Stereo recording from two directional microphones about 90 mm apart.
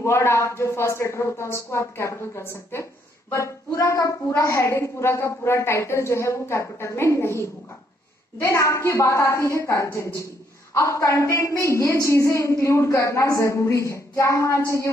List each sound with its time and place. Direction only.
0.0 s a woman's voice: 30° left (ahead or behind)